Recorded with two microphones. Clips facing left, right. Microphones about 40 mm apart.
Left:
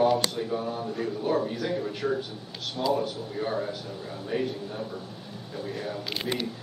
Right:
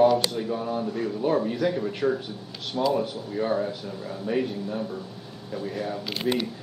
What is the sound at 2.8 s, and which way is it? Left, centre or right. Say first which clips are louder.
Speech: right 2 dB; right.